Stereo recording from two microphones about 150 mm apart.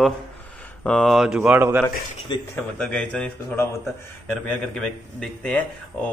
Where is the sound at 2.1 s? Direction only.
35° left (ahead or behind).